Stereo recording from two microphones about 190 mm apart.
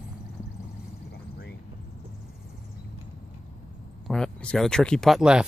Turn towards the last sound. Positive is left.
turn(degrees=-5)  # may be behind; listen again after turning